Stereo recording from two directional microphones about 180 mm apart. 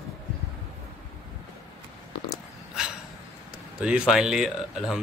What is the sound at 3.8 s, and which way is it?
Speech, 5° right (ahead or behind).